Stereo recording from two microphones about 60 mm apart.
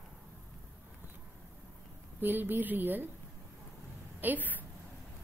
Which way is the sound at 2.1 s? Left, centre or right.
Right.